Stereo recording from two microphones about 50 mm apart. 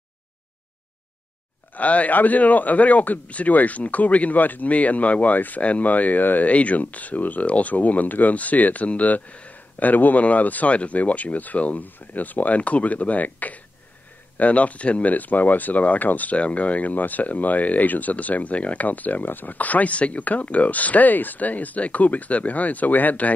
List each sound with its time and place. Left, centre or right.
1.8 s speech: left